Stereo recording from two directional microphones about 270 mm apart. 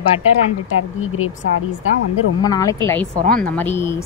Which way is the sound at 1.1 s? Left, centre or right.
Left.